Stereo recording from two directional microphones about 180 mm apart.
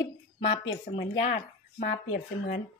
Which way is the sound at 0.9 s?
30° left (ahead or behind).